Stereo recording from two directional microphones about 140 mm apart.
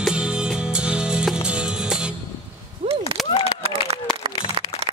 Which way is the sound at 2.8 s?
40° right (ahead or behind).